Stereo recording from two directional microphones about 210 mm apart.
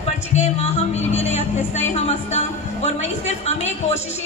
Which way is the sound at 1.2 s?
30° left (ahead or behind).